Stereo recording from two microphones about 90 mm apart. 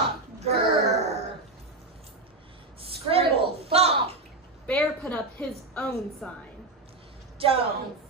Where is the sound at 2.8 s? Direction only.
90° right.